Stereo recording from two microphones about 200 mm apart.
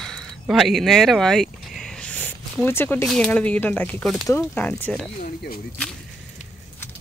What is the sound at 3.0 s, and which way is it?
Speech, 5° left (ahead or behind).